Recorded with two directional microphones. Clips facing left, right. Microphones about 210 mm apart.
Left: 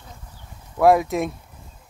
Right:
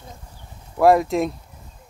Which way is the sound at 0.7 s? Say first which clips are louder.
Right 1 dB; centre (ahead or behind).